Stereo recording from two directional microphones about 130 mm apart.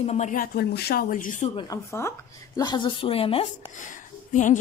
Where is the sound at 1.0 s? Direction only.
90° left.